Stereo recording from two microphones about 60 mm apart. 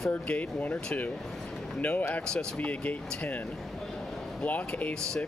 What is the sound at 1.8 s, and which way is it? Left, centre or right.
Speech, left.